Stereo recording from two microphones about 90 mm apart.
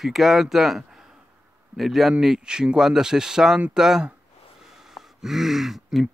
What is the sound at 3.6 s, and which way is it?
Speech, 15° right (ahead or behind).